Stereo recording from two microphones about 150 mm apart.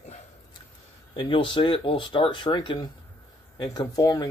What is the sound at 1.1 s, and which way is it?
Speech, 35° left (ahead or behind).